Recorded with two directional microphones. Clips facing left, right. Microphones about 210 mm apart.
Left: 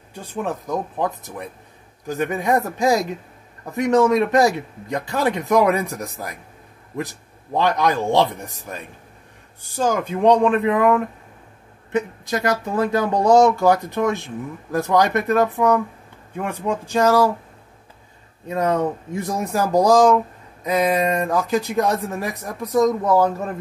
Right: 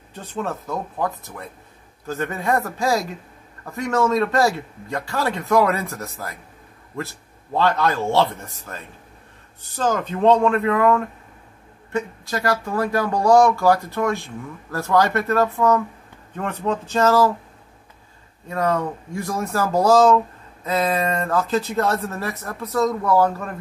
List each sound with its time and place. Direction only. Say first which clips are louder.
0.1 s speech: left 1 dB; 10° left (ahead or behind)
18.5 s speech: left 2 dB; 20° left (ahead or behind)